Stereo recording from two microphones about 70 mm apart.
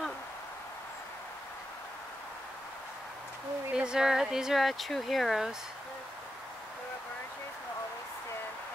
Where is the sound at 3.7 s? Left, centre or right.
Centre.